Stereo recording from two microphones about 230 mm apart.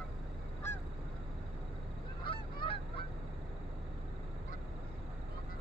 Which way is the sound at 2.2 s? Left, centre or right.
Left.